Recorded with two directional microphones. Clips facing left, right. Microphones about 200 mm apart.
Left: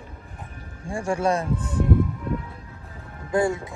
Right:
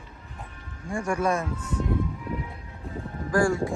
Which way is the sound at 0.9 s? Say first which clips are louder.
Left 2 dB; 30° left (ahead or behind).